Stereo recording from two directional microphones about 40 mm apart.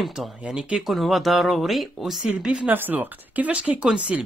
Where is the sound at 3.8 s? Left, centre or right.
Right.